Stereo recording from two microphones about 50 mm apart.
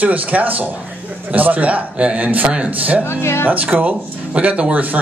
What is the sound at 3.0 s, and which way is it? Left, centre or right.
Speech, left.